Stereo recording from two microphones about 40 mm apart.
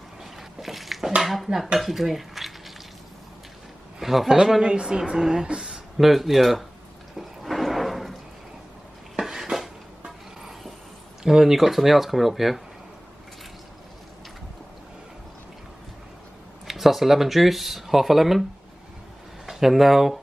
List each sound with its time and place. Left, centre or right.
0.2 s a sound: centre
1.2 s speech: centre
1.8 s cutlery: centre
4.0 s speech: centre
4.6 s a woman's voice: right
5.9 s speech: centre
7.2 s a sound: centre
9.3 s a sound: centre
11.2 s speech: centre
16.6 s speech: centre
19.4 s speech: centre